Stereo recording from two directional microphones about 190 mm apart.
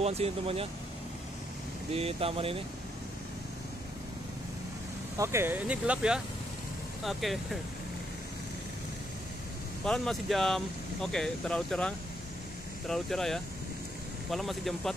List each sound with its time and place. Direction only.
0.0 s speech: 35° right (ahead or behind)
2.0 s speech: 30° right (ahead or behind)
5.1 s speech: 15° right (ahead or behind)
9.8 s speech: centre (ahead or behind)